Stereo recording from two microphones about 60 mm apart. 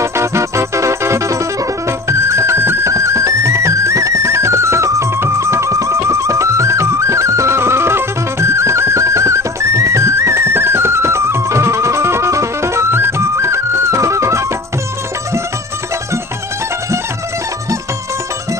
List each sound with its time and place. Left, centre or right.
0.0 s music: right
2.9 s music: right